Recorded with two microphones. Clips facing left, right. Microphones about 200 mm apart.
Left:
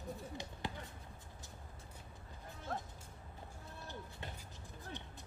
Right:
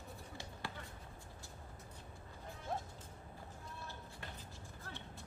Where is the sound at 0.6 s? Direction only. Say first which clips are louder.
Left 3 dB; 20° left (ahead or behind).